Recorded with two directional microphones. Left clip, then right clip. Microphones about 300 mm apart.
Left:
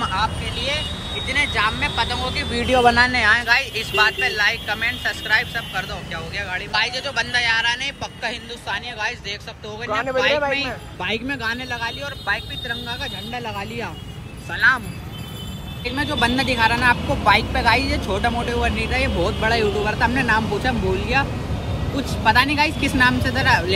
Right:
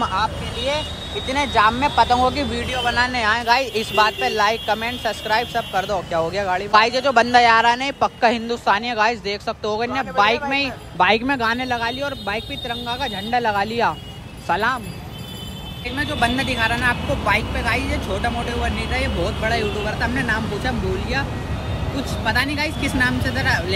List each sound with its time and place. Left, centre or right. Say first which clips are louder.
0.0 s vehicle: right 1 dB; centre
1.4 s speech: right 4 dB; centre
2.6 s speech: left 6 dB; centre; by 11.1 s right
11.1 s speech: right 3 dB; centre
13.3 s speech: right 14 dB; right
14.5 s speech: left 2 dB; centre
16.0 s speech: even; centre